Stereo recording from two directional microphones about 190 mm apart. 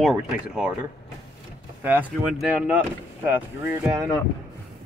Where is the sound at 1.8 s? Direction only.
10° right (ahead or behind).